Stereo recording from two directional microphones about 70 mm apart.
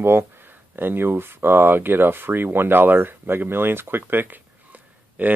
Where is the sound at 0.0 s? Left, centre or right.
Right.